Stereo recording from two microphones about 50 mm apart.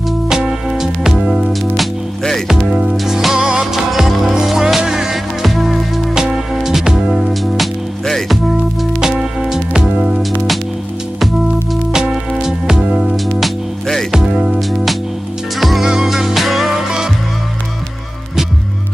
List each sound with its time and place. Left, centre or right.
0.3 s music: centre
1.5 s music: centre
2.4 s music: centre
9.0 s music: centre
11.9 s music: centre
12.8 s music: right
13.4 s music: centre
14.1 s music: centre
15.6 s music: centre